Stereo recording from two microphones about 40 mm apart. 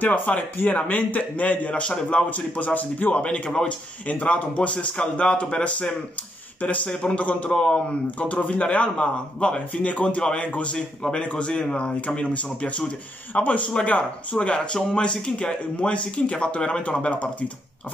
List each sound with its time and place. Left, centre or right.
0.0 s a man's voice: left
2.2 s a man's voice: left
3.3 s a man's voice: left
6.9 s speech: left
7.2 s a man's voice: left
7.5 s speech: left
8.2 s a man's voice: left